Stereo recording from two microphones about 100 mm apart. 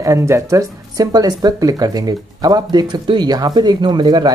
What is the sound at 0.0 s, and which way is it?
Speech, 30° right (ahead or behind).